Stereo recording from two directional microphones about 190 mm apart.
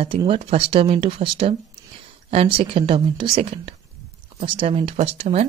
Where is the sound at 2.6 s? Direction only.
30° right (ahead or behind).